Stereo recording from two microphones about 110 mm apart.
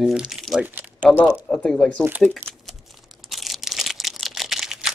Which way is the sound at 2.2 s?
5° left (ahead or behind).